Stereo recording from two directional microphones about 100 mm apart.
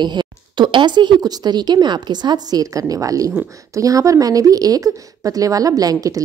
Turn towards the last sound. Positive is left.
turn(degrees=-35)  # may be behind; listen again after turning